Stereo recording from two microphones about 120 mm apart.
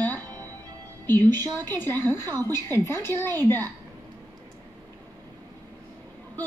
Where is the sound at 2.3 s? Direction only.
25° right (ahead or behind).